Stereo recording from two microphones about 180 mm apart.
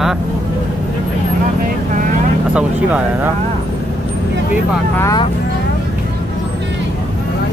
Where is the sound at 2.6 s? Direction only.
5° right (ahead or behind).